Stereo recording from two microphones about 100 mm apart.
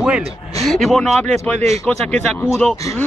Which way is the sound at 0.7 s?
5° left (ahead or behind).